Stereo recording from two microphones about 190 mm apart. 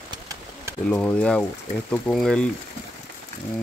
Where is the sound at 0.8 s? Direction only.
5° left (ahead or behind).